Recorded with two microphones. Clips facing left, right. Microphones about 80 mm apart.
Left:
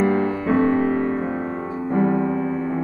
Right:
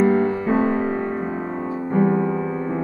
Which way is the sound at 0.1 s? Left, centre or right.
Left.